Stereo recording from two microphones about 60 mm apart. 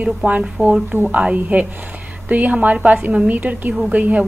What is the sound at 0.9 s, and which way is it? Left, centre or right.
A woman's voice, right.